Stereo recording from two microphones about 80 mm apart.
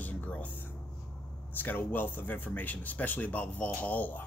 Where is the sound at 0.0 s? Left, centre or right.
Centre.